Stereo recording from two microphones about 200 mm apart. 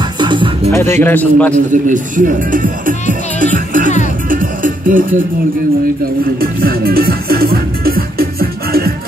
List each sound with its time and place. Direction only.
0.2 s music: 25° right (ahead or behind)
0.7 s a man's voice: 15° left (ahead or behind)
1.5 s speech: 40° right (ahead or behind)
4.3 s music: 45° right (ahead or behind)
6.4 s music: 50° right (ahead or behind)